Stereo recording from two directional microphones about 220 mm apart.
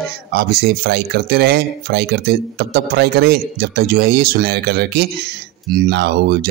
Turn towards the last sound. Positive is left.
turn(degrees=-45)  # may be behind; listen again after turning